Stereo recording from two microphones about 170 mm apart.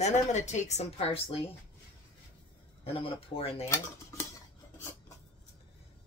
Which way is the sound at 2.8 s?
35° left (ahead or behind).